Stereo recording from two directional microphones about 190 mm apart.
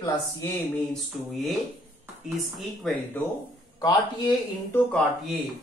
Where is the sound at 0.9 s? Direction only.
Centre (ahead or behind).